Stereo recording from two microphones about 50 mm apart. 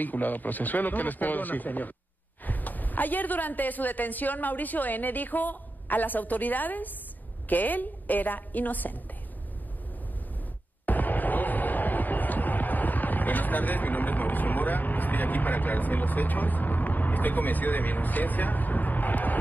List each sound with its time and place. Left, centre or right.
0.0 s a woman's voice: left
10.9 s music: left